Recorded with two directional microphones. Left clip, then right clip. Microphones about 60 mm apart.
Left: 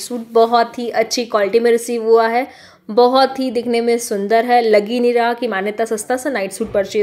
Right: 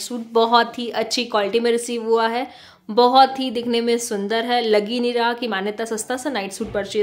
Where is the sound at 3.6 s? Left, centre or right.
Centre.